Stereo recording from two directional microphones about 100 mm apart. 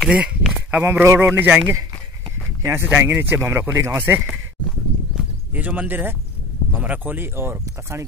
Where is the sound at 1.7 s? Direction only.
30° right (ahead or behind).